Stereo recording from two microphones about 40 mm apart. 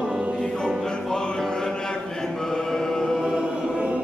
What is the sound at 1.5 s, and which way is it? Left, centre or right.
Chant, centre.